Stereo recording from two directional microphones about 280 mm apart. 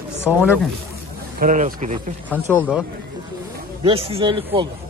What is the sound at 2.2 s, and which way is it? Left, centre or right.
Speech, centre.